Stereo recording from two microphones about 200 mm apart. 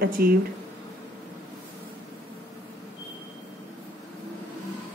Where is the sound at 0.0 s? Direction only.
50° right (ahead or behind).